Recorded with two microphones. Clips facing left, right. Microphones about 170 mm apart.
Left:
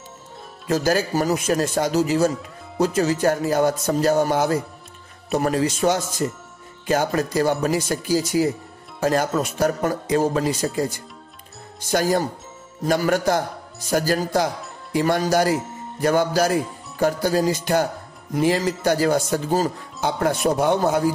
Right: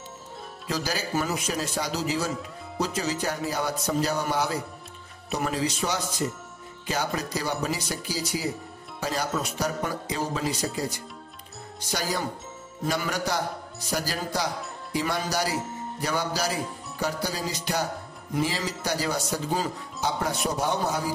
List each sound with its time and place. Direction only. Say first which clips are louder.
0.7 s speech: left 10 dB; 50° left (ahead or behind)
11.9 s speech: left 9 dB; 50° left (ahead or behind)